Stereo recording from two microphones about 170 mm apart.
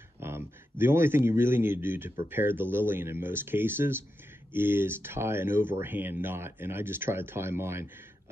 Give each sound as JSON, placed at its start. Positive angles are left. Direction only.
{"t": 0.2, "sound": "speech", "side_deg": -15}